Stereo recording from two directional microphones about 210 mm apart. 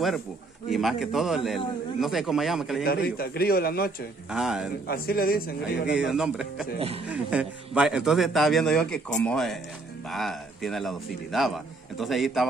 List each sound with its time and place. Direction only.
0.7 s a man's voice: centre (ahead or behind)
2.8 s a man's voice: 45° left (ahead or behind)
4.3 s a man's voice: centre (ahead or behind)
4.8 s a man's voice: 45° left (ahead or behind)
5.9 s a man's voice: centre (ahead or behind)